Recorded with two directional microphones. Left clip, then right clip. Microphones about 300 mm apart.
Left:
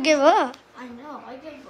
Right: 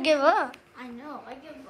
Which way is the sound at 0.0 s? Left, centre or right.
Centre.